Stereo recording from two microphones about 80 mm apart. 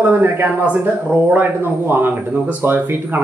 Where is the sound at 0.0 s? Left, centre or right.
Right.